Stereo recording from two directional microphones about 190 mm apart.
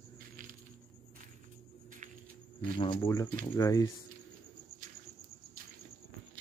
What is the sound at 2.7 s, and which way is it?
Speech, 25° left (ahead or behind).